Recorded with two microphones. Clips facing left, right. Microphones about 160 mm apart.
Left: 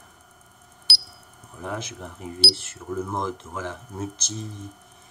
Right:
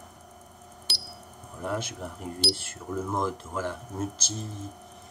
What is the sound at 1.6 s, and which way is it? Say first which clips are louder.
Speech: right 1 dB; 5° right (ahead or behind).